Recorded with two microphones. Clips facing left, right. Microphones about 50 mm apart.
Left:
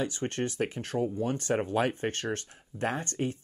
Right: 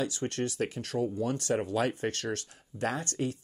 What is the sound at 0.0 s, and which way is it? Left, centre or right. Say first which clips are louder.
Speech: left 1 dB; left.